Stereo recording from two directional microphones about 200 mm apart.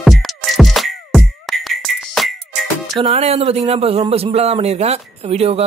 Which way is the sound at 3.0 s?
30° right (ahead or behind).